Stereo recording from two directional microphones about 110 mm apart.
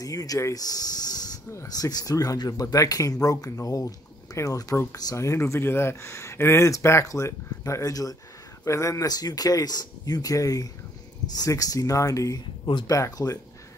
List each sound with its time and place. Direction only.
0.0 s speech: 35° left (ahead or behind)